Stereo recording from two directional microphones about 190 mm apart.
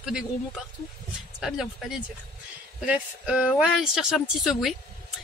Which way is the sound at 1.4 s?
Centre (ahead or behind).